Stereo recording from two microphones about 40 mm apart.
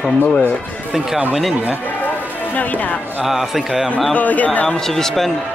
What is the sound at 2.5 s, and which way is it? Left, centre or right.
Speech, left.